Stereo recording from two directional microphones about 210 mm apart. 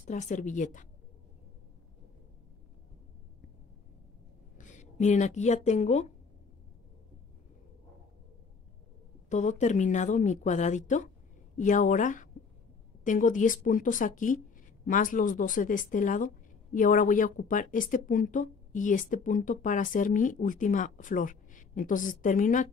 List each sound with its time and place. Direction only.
0.0 s speech: 35° left (ahead or behind)
4.6 s speech: 35° left (ahead or behind)
9.3 s a woman's voice: 35° left (ahead or behind)